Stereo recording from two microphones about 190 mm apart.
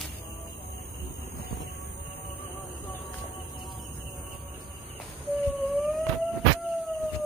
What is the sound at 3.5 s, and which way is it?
Train, 25° left (ahead or behind).